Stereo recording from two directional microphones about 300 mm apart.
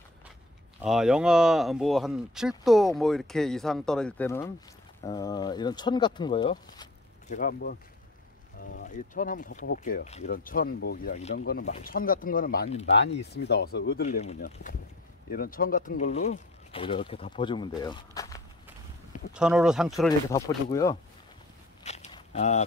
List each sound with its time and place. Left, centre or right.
0.8 s speech: centre
7.2 s speech: left
8.7 s speech: left; by 18.4 s centre
19.3 s speech: centre
20.1 s speech: centre
21.8 s a sound: left